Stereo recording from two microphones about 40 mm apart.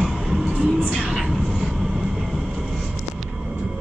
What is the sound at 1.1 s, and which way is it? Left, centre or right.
Vehicle, centre.